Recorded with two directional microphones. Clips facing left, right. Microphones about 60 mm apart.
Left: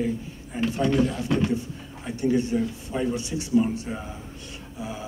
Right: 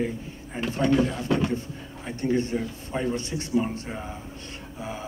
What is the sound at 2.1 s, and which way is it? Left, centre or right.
A man's voice, right.